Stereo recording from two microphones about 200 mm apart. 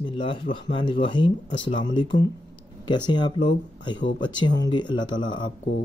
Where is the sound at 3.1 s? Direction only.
20° left (ahead or behind).